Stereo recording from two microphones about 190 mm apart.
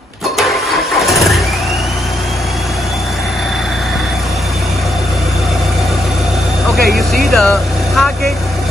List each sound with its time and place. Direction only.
6.8 s speech: 55° right (ahead or behind)
7.2 s vehicle: centre (ahead or behind)